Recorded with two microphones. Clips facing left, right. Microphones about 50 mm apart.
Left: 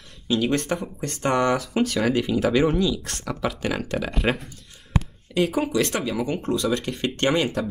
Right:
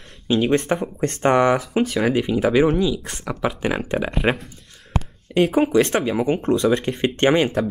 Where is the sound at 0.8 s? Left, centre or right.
Right.